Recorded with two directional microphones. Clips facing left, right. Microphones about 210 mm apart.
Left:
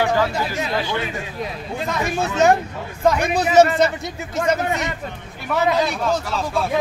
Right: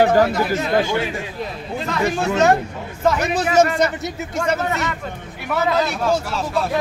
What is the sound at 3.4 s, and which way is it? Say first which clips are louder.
Speech: left 3 dB; centre (ahead or behind).